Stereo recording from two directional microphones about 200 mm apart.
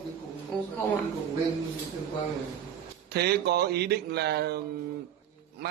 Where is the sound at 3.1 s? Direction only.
55° right (ahead or behind).